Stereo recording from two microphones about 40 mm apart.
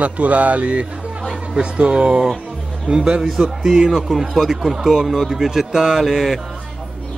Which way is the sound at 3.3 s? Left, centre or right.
Centre.